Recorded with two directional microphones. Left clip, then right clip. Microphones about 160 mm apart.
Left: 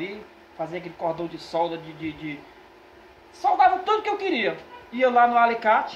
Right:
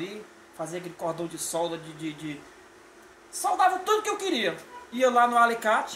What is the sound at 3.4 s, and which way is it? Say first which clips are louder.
Speech: left 5 dB; 25° right (ahead or behind).